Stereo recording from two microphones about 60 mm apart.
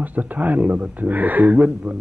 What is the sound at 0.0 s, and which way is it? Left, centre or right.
A man's voice, right.